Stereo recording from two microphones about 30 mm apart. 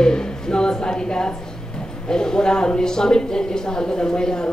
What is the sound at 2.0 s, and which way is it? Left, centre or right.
A man's voice, left.